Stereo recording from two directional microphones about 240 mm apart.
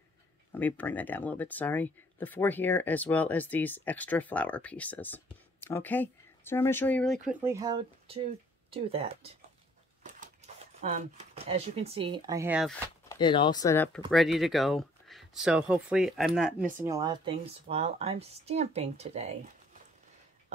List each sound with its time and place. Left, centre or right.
0.5 s speech: centre
7.2 s speech: centre
13.1 s speech: centre
14.1 s speech: centre; by 19.5 s right